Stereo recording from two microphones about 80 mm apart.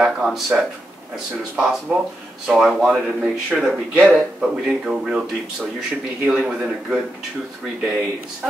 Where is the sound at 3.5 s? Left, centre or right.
Centre.